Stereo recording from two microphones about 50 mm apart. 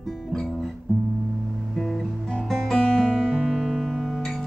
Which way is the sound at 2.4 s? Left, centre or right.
Centre.